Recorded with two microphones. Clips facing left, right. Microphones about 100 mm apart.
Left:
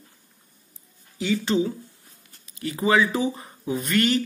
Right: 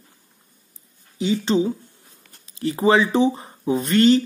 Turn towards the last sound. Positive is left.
turn(degrees=-30)  # may be behind; listen again after turning